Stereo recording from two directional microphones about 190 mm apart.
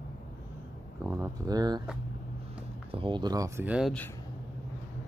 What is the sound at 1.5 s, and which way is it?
Speech, 20° right (ahead or behind).